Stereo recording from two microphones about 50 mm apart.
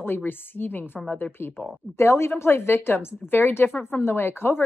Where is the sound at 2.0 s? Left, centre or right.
Left.